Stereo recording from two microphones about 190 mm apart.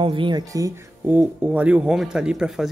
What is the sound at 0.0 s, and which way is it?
Speech, 25° right (ahead or behind).